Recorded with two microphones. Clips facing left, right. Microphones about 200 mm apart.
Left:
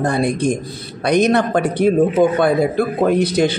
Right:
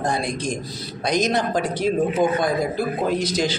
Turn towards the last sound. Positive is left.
turn(degrees=60)  # may be behind; listen again after turning